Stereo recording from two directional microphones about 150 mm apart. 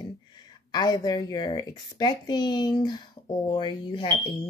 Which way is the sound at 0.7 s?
30° left (ahead or behind).